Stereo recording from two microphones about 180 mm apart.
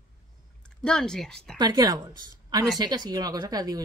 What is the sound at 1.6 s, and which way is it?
A woman's voice, 20° right (ahead or behind).